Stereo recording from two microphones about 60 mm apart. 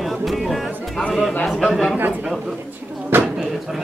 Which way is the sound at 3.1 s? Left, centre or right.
Right.